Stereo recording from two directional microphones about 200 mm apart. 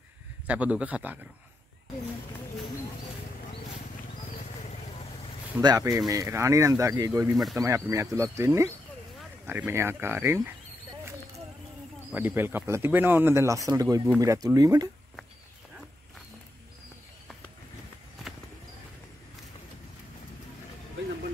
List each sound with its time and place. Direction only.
0.5 s speech: 5° right (ahead or behind)
5.6 s speech: 20° right (ahead or behind)
12.1 s speech: 10° right (ahead or behind)